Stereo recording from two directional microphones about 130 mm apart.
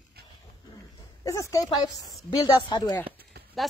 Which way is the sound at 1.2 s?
25° left (ahead or behind).